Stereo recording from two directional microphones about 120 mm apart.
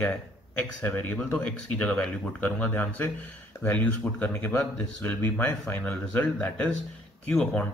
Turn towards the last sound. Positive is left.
turn(degrees=10)  # may be behind; listen again after turning